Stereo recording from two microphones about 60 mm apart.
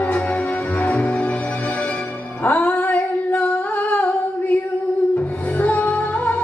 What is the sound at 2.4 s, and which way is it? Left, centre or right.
Female singing, left.